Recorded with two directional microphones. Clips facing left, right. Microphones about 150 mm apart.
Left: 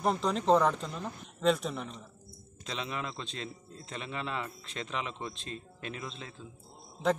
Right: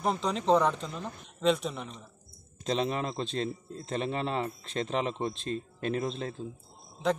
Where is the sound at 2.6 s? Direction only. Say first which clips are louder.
Right 8 dB; 40° right (ahead or behind).